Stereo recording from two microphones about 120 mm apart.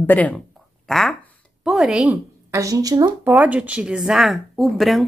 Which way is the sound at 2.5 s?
30° right (ahead or behind).